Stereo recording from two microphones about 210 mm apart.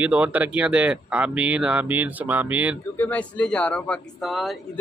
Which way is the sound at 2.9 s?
10° left (ahead or behind).